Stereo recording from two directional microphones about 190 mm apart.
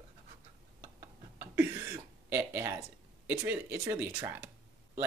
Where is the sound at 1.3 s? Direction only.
15° right (ahead or behind).